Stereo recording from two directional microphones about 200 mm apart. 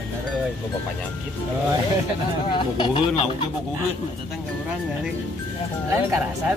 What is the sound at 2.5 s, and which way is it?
Speech, 25° left (ahead or behind).